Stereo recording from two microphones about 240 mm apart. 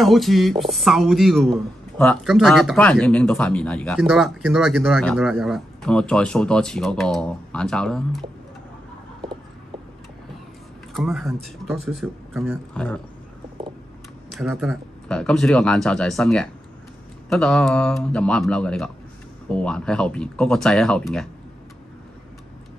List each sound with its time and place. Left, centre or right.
0.0 s speech: centre
10.9 s speech: centre
14.3 s speech: centre